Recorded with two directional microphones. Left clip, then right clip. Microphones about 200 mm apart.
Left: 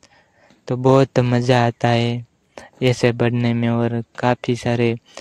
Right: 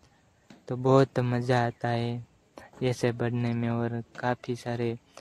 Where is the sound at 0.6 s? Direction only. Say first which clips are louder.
Left 8 dB; 35° left (ahead or behind).